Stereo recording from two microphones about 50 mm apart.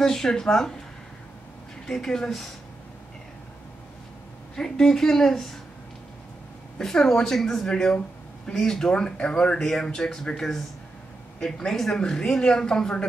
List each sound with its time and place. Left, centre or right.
0.0 s a woman's voice: centre
1.9 s a woman's voice: centre
4.6 s a woman's voice: centre
6.8 s a woman's voice: centre